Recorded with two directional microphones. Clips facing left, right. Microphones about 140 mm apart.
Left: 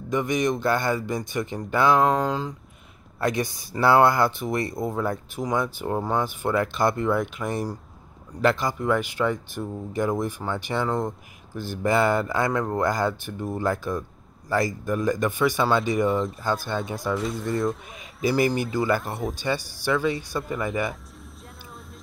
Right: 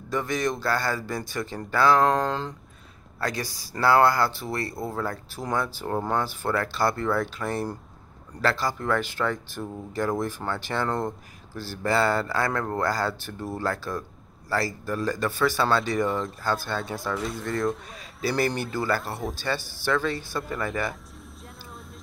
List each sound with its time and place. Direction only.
0.1 s speech: 15° left (ahead or behind)
2.0 s speech: 5° left (ahead or behind)
3.2 s speech: 20° left (ahead or behind)
16.1 s speech: centre (ahead or behind)